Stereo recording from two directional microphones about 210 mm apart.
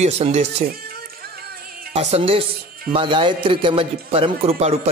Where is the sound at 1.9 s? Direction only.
30° right (ahead or behind).